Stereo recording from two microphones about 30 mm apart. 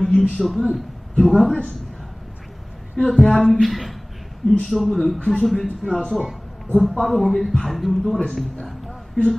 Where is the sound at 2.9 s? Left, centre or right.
Left.